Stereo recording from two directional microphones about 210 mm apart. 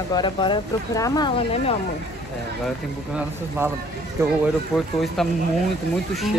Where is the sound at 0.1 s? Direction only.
20° left (ahead or behind).